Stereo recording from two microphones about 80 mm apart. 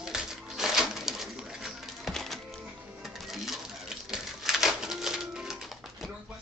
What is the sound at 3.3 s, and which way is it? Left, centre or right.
Cash register, centre.